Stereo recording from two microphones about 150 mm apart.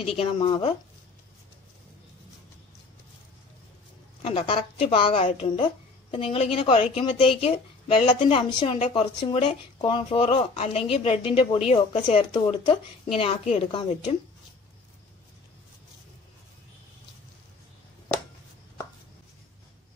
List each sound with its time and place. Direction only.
0.1 s a woman's voice: 35° left (ahead or behind)
4.2 s a woman's voice: 40° left (ahead or behind)
12.4 s a woman's voice: 35° left (ahead or behind)